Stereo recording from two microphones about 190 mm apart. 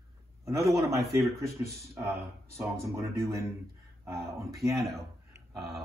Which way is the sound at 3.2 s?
15° right (ahead or behind).